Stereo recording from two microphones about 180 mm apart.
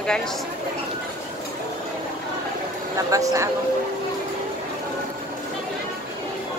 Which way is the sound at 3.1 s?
20° right (ahead or behind).